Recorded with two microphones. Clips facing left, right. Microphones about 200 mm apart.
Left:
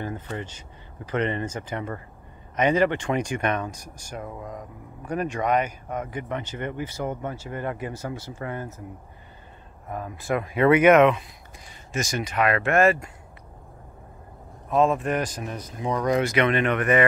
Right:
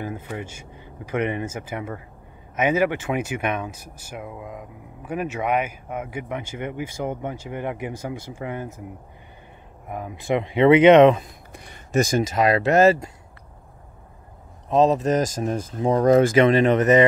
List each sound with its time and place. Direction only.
0.0 s speech: 10° right (ahead or behind)
9.8 s speech: 15° right (ahead or behind); by 12.6 s 35° right (ahead or behind)
14.7 s speech: 35° right (ahead or behind)